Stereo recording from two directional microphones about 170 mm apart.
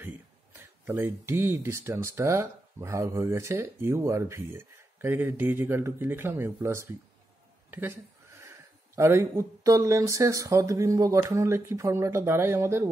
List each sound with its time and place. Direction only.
0.0 s speech: 15° right (ahead or behind)
8.4 s speech: 15° right (ahead or behind)